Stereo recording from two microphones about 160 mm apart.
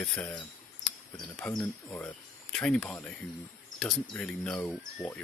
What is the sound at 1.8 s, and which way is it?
Speech, 10° left (ahead or behind).